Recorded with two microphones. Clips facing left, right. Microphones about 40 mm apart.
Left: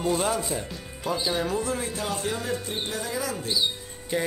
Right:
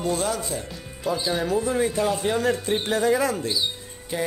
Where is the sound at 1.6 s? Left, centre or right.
Centre.